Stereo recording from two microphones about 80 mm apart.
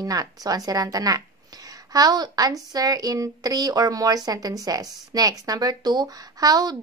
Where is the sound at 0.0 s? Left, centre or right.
Right.